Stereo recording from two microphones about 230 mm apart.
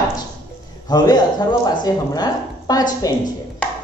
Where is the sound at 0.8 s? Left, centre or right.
Centre.